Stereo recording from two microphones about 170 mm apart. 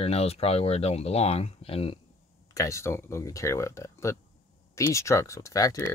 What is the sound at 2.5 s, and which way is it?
Speech, 20° left (ahead or behind).